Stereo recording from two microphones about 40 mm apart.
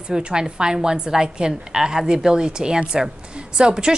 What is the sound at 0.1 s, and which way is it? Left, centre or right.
A woman's voice, centre.